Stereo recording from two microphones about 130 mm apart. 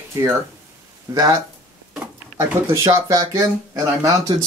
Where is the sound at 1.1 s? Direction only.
25° right (ahead or behind).